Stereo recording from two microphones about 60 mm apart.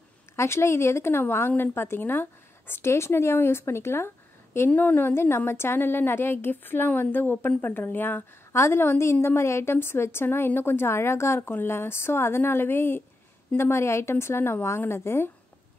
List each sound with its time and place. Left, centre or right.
0.4 s a woman's voice: left
4.7 s a woman's voice: left